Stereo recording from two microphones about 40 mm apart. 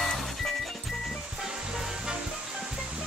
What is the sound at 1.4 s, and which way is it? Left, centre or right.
Music, centre.